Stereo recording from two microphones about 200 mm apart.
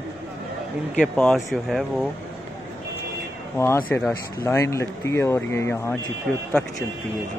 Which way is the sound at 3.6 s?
10° left (ahead or behind).